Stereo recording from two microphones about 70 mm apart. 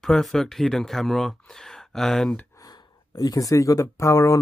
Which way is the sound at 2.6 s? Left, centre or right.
Left.